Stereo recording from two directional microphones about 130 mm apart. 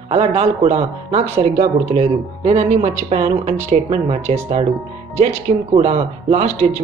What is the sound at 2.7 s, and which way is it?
Speech, 45° right (ahead or behind).